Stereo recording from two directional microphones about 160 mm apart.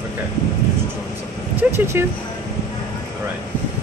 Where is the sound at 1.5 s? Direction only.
15° right (ahead or behind).